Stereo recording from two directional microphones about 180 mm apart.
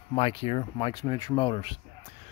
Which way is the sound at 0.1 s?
30° left (ahead or behind).